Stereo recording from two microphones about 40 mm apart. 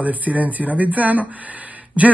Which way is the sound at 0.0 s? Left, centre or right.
Right.